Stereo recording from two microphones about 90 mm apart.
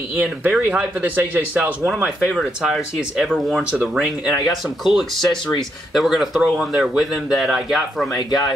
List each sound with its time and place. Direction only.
0.1 s speech: 20° right (ahead or behind); by 8.1 s 5° right (ahead or behind)